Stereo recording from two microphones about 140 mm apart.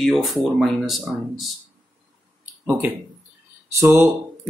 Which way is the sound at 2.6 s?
10° right (ahead or behind).